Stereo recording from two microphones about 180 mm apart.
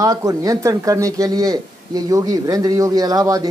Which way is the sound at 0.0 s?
20° right (ahead or behind).